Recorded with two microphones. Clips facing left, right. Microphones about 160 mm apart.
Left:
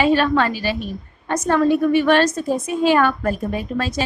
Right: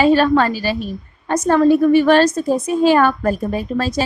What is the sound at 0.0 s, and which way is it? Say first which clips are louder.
A woman's voice: right 3 dB; 40° right (ahead or behind).